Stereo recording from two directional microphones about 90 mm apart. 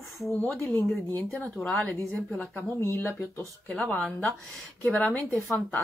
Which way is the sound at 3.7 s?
10° left (ahead or behind).